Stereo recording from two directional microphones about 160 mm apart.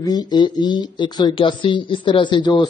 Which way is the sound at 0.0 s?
25° left (ahead or behind).